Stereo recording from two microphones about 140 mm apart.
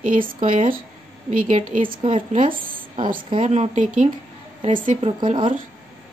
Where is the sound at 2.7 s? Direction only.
35° right (ahead or behind).